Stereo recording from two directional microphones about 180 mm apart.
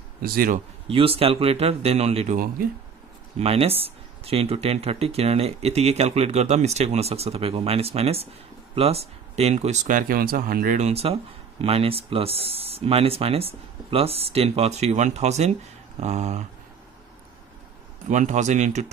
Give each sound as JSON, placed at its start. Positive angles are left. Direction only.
{"t": 0.2, "sound": "speech", "side_deg": -55}
{"t": 0.8, "sound": "speech", "side_deg": -30}
{"t": 2.3, "sound": "speech", "side_deg": -50}
{"t": 3.3, "sound": "speech", "side_deg": -35}
{"t": 10.8, "sound": "speech", "side_deg": -35}
{"t": 18.0, "sound": "speech", "side_deg": -40}